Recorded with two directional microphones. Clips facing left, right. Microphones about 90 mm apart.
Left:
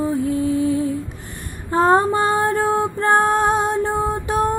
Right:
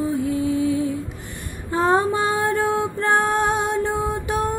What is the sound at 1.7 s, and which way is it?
Female singing, 40° left (ahead or behind).